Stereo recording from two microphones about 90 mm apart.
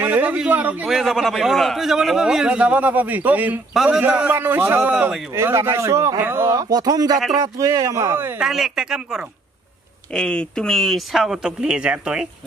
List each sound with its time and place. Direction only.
0.0 s a man's voice: 20° right (ahead or behind)
0.8 s a man's voice: centre (ahead or behind); by 3.6 s 20° right (ahead or behind)
3.7 s a man's voice: 5° right (ahead or behind)
4.0 s a man's voice: 20° right (ahead or behind)
6.7 s speech: 45° right (ahead or behind)
8.4 s a man's voice: 5° right (ahead or behind)
10.1 s a man's voice: 10° left (ahead or behind); by 12.3 s 10° right (ahead or behind)